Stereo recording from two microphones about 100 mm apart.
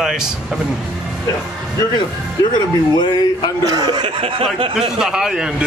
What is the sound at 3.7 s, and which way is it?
Speech, 40° right (ahead or behind).